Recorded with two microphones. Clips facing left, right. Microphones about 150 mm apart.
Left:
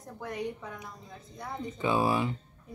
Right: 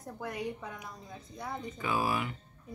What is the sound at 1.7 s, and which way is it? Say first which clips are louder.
Speech: left 5 dB; 25° left (ahead or behind).